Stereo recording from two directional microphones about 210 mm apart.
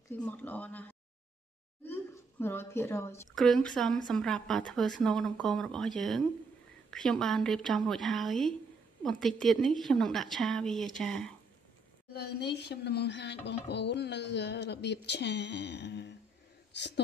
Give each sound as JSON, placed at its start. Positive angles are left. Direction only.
{"t": 0.1, "sound": "a woman's voice", "side_deg": 10}
{"t": 12.1, "sound": "speech", "side_deg": 50}